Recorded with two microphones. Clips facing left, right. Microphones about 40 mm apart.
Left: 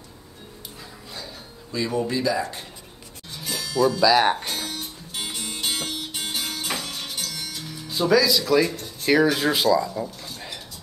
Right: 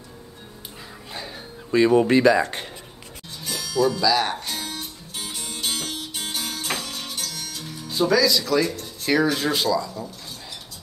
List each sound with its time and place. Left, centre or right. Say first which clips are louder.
1.1 s a sound: right 4 dB; right
2.0 s speech: right 7 dB; right
3.3 s music: right 1 dB; centre
4.0 s speech: left 3 dB; centre
4.6 s music: even; centre
5.6 s music: even; left
7.9 s speech: even; centre